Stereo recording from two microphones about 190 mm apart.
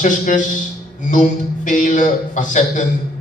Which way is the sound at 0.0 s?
45° left (ahead or behind).